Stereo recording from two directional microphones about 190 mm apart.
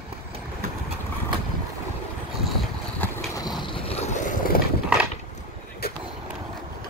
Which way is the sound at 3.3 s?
20° left (ahead or behind).